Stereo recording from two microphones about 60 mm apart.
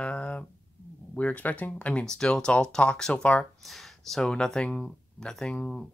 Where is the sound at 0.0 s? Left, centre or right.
Centre.